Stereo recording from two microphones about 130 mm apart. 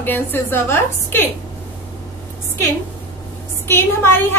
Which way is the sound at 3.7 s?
20° left (ahead or behind).